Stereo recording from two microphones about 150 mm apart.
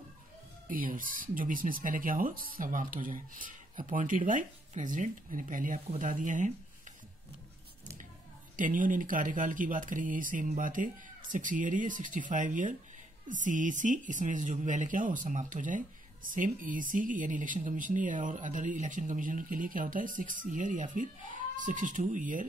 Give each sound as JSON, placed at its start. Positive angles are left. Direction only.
{"t": 0.7, "sound": "speech", "side_deg": -65}
{"t": 8.5, "sound": "speech", "side_deg": -60}